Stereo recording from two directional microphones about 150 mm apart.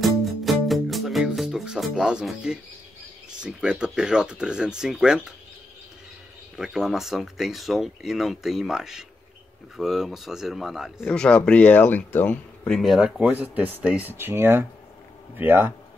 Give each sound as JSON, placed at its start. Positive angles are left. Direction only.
{"t": 0.0, "sound": "music", "side_deg": 0}
{"t": 3.4, "sound": "speech", "side_deg": -5}
{"t": 6.5, "sound": "speech", "side_deg": 0}
{"t": 11.1, "sound": "speech", "side_deg": 10}